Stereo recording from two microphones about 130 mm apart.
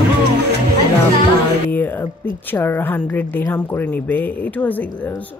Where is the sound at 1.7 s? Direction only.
15° left (ahead or behind).